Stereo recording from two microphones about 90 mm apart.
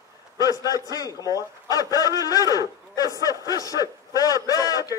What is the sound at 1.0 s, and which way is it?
A man's voice, 40° left (ahead or behind).